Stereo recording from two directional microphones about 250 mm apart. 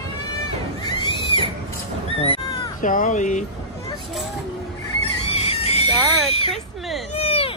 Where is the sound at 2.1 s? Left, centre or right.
Left.